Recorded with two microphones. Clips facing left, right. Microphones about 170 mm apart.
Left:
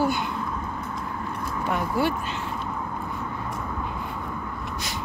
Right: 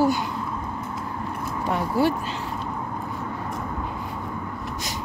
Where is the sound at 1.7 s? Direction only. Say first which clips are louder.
Right 3 dB; 35° right (ahead or behind).